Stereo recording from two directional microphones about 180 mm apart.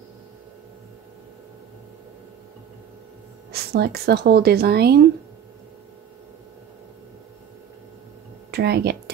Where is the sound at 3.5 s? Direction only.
60° right (ahead or behind).